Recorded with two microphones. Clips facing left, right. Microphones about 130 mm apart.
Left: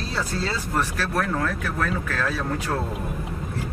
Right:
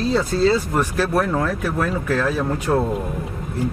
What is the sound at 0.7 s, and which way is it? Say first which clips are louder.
Speech: right 5 dB; 15° right (ahead or behind).